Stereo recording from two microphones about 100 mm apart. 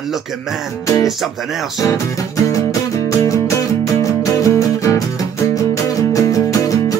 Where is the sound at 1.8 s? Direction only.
35° left (ahead or behind).